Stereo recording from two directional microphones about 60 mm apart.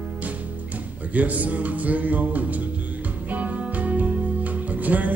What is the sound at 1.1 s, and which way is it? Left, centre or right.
Speech, right.